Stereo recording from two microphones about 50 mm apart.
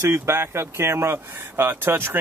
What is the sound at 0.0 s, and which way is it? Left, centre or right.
Speech, right.